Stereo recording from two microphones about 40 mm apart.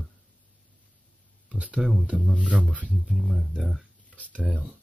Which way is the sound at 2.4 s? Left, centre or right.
Right.